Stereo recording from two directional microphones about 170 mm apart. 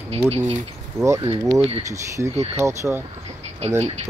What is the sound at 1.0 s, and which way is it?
Speech, 15° right (ahead or behind).